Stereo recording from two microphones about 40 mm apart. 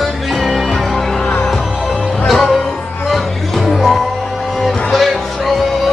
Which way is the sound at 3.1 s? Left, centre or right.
Centre.